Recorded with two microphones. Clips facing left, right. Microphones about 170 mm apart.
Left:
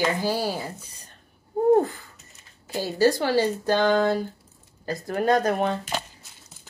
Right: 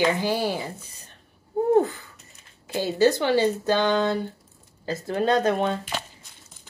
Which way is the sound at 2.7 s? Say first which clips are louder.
Right 1 dB; 20° right (ahead or behind).